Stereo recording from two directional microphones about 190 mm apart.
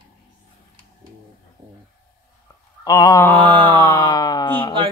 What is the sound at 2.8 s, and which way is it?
Mantra, 20° left (ahead or behind).